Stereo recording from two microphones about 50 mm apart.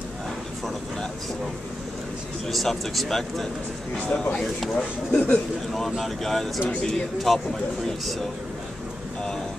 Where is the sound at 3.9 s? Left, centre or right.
Centre.